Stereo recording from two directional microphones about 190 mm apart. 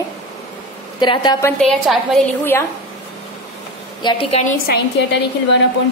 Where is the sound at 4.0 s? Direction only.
30° left (ahead or behind).